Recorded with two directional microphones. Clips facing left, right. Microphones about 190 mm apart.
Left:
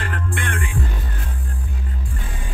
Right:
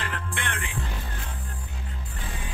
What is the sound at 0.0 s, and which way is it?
Music, 50° left (ahead or behind).